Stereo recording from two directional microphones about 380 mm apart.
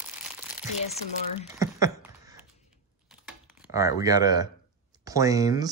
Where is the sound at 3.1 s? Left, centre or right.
Centre.